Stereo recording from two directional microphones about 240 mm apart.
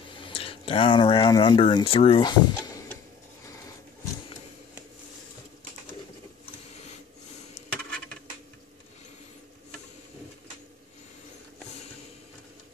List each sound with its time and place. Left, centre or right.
0.2 s speech: left